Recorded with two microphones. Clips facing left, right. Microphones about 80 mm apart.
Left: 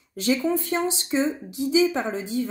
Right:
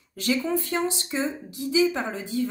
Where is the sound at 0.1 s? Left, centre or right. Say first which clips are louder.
Left 2 dB; left.